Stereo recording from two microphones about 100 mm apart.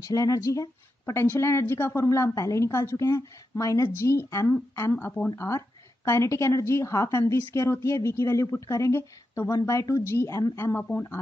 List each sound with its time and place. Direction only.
0.0 s speech: 35° left (ahead or behind)
4.9 s speech: 15° left (ahead or behind)
5.3 s a woman's voice: 30° left (ahead or behind)